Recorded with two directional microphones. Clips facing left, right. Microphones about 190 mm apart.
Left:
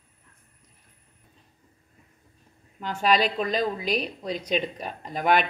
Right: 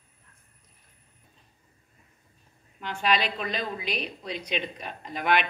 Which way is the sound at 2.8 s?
40° left (ahead or behind).